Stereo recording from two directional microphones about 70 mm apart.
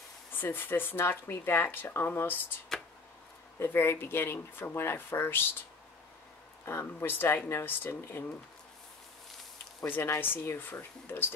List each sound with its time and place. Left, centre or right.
0.3 s speech: left
3.5 s speech: left
6.6 s speech: left
9.8 s speech: left